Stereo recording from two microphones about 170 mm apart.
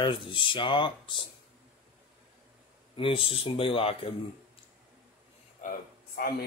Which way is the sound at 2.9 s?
30° left (ahead or behind).